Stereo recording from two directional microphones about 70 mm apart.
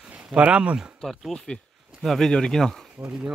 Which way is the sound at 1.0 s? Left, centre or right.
Centre.